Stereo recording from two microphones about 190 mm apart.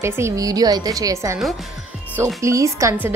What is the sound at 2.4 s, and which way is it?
Speech, 15° right (ahead or behind).